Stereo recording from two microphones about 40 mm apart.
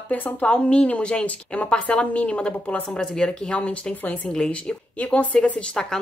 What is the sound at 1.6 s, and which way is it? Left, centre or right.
A woman's voice, left.